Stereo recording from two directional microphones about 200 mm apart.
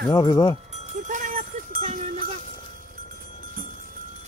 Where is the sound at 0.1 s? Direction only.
20° left (ahead or behind).